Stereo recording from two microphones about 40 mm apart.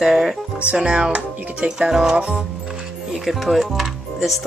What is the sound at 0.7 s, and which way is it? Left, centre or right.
Speech, right.